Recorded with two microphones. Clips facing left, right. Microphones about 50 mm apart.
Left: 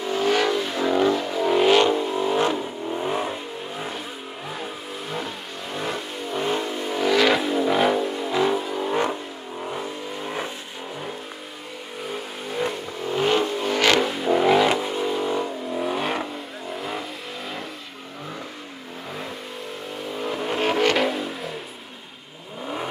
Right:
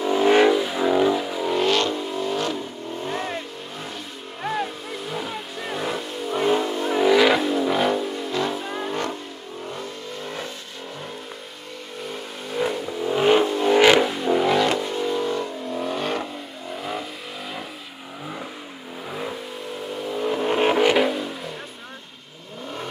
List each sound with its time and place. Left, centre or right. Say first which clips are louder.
0.0 s vehicle: right 5 dB; centre
4.5 s vehicle: right 7 dB; centre
12.0 s vehicle: left 2 dB; centre
14.0 s vehicle: left 1 dB; centre
20.1 s vehicle: right 4 dB; centre